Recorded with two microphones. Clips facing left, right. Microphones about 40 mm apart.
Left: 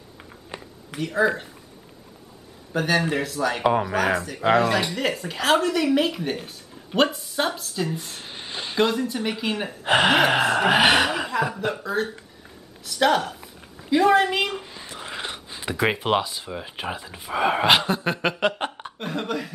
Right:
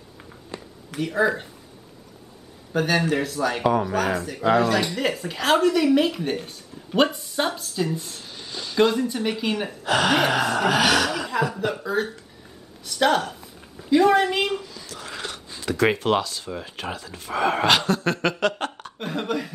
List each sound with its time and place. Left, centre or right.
0.5 s a sound: left
0.9 s speech: centre
2.7 s speech: centre
8.2 s a sound: left
8.7 s speech: centre
9.8 s speech: left
11.5 s a woman's voice: centre
14.6 s speech: left
18.9 s speech: centre